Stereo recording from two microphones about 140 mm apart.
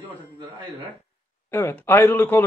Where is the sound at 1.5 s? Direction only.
15° left (ahead or behind).